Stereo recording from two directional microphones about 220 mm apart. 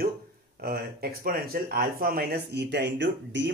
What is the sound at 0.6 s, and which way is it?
Speech, 45° right (ahead or behind).